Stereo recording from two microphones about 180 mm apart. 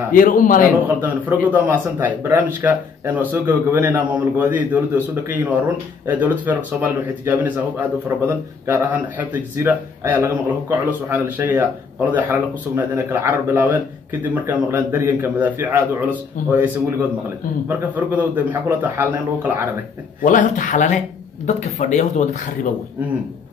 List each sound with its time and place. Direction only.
0.1 s speech: 50° left (ahead or behind)
0.8 s a man's voice: 10° right (ahead or behind)
17.6 s a man's voice: 10° right (ahead or behind)
20.2 s speech: 45° left (ahead or behind)